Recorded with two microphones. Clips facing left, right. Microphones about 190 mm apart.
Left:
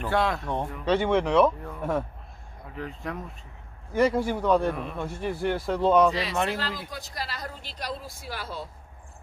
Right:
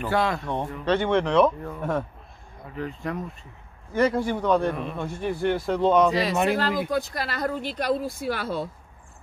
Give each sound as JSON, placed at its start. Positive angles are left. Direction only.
{"t": 0.0, "sound": "a man's voice", "side_deg": 0}
{"t": 6.5, "sound": "speech", "side_deg": -50}